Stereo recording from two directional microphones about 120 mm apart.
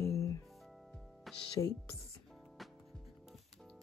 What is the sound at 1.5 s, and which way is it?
Speech, 25° left (ahead or behind).